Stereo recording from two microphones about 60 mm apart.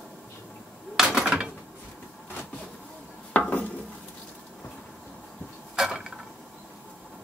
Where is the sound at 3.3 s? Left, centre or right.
Left.